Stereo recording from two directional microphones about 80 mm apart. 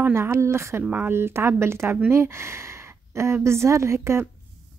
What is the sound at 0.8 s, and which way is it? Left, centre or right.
Speech, right.